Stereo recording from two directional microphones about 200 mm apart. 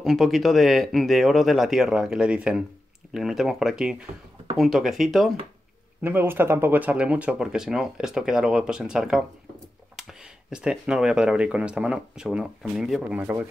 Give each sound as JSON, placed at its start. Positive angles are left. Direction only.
{"t": 0.0, "sound": "speech", "side_deg": 0}